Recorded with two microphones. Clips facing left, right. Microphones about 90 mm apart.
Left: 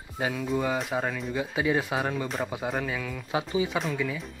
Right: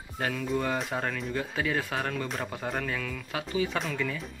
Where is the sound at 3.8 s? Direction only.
5° left (ahead or behind).